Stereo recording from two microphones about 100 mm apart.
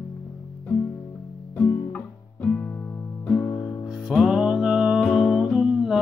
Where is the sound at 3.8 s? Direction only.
5° right (ahead or behind).